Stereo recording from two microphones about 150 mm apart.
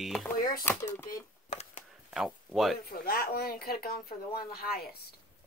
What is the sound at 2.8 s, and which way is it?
Speech, 85° left.